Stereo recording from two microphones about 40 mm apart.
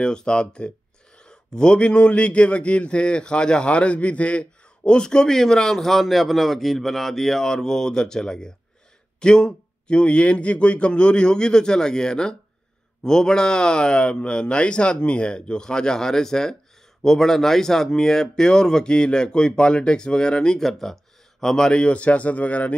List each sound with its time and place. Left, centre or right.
0.0 s speech: left
20.6 s speech: centre; by 22.8 s left